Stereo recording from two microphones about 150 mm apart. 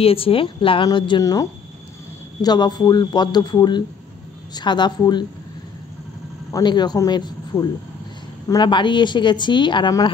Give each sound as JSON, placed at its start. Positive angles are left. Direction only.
{"t": 0.0, "sound": "a woman's voice", "side_deg": 40}
{"t": 6.5, "sound": "a woman's voice", "side_deg": 30}